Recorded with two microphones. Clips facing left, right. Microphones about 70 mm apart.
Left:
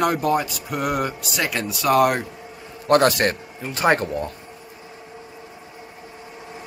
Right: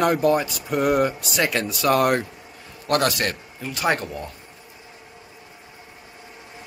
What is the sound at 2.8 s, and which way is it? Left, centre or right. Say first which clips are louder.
A man's voice: left 5 dB; left.